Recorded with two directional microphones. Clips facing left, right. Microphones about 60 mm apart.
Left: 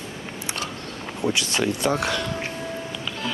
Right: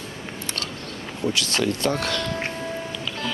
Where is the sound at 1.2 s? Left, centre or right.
Left.